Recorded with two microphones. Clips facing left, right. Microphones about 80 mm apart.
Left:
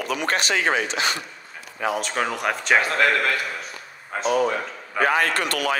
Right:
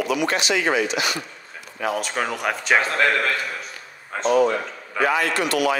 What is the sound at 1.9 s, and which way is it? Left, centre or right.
Speech, centre.